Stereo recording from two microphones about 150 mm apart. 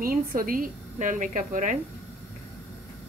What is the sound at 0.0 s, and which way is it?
A woman's voice, 70° right (ahead or behind).